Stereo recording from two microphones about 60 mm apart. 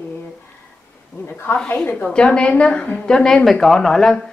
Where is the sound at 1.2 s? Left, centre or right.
Left.